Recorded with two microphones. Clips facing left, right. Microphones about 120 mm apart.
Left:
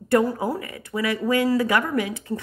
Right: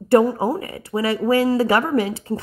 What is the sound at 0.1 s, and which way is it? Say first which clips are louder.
Speech: right 5 dB; 30° right (ahead or behind).